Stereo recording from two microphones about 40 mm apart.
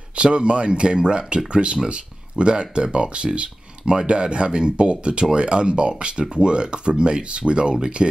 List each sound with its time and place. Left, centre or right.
0.2 s speech: right